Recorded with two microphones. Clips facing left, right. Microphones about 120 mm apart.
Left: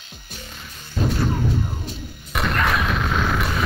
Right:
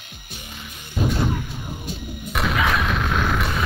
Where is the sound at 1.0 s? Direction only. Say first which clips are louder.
Even; 10° right (ahead or behind).